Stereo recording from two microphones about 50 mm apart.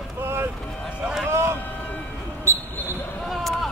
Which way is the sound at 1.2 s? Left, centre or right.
Right.